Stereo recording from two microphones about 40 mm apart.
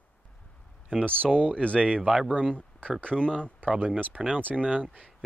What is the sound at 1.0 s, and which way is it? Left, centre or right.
Speech, right.